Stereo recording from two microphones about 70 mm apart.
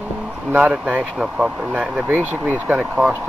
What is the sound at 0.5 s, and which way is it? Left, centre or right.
Speech, centre.